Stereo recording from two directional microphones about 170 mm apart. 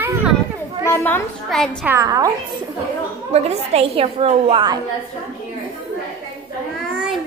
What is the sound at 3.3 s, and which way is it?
A woman's voice, 40° right (ahead or behind).